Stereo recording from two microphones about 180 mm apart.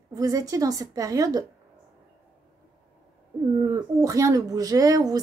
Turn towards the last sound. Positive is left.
turn(degrees=-20)  # may be behind; listen again after turning